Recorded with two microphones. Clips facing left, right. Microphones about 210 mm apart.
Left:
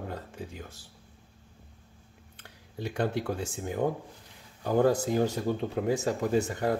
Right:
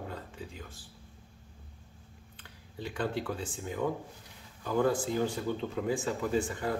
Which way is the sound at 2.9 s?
45° left (ahead or behind).